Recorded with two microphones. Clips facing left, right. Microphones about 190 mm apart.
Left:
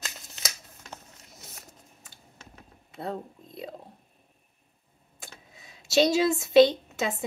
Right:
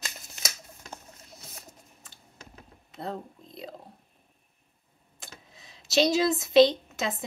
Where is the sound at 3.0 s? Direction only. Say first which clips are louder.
Left 1 dB; 10° left (ahead or behind).